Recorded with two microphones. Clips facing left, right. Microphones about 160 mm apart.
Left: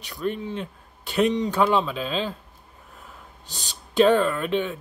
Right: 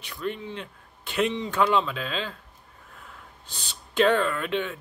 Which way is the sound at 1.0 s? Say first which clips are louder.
Left 5 dB; 40° left (ahead or behind).